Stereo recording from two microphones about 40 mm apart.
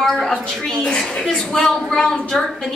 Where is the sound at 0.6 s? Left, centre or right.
Centre.